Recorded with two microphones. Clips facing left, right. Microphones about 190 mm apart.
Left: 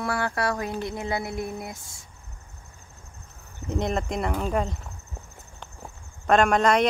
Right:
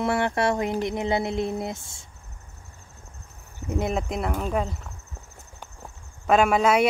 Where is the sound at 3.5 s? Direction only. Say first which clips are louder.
Even; 10° right (ahead or behind).